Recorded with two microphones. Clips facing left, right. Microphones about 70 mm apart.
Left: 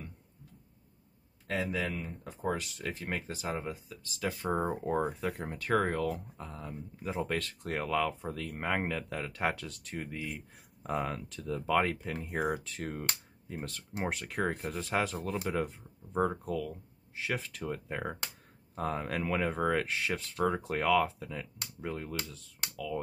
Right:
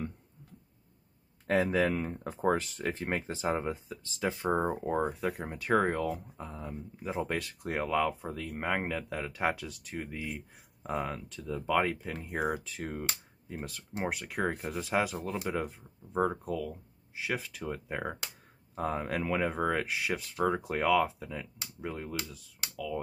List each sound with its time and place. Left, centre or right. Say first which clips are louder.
1.5 s speech: right 6 dB; right
4.6 s speech: right 1 dB; centre